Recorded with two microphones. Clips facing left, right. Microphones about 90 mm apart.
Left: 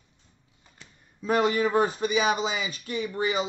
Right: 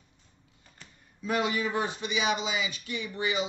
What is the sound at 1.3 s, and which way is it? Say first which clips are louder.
A man's voice: left 5 dB; 40° left (ahead or behind).